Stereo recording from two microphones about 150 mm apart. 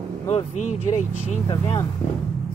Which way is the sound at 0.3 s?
45° left (ahead or behind).